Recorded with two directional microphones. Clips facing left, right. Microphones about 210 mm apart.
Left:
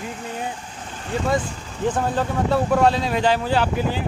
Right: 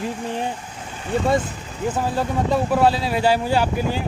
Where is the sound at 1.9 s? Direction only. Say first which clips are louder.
Right 1 dB; 10° right (ahead or behind).